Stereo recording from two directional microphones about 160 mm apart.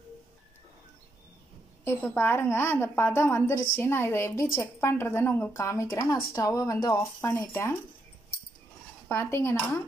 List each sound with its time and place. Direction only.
1.9 s a woman's voice: 15° left (ahead or behind)
9.1 s a woman's voice: 15° left (ahead or behind)